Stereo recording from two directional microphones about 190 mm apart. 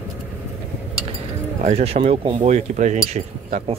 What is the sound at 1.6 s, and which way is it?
Speech, 35° right (ahead or behind).